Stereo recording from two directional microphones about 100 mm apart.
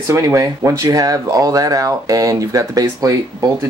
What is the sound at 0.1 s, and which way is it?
Speech, 30° right (ahead or behind).